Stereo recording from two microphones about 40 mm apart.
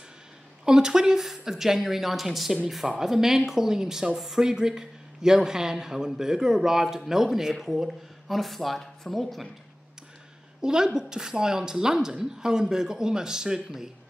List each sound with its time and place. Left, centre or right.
0.7 s speech: centre
10.6 s speech: centre